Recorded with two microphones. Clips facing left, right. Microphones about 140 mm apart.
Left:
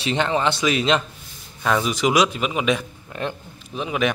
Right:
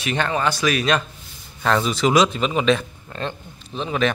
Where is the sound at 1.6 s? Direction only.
10° left (ahead or behind).